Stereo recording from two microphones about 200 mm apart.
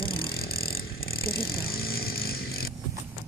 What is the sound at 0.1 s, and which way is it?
Vehicle, 50° left (ahead or behind).